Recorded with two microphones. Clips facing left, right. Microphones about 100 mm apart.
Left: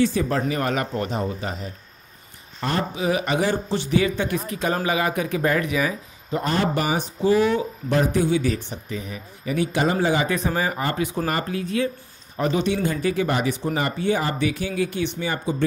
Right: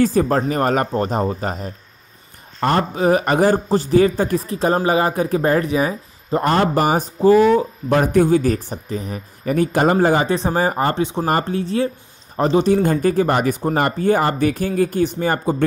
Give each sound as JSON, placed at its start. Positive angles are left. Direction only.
{"t": 0.0, "sound": "speech", "side_deg": -45}
{"t": 6.4, "sound": "speech", "side_deg": -55}
{"t": 6.7, "sound": "speech", "side_deg": -45}
{"t": 10.2, "sound": "speech", "side_deg": -30}
{"t": 11.0, "sound": "speech", "side_deg": -25}
{"t": 11.2, "sound": "speech", "side_deg": -35}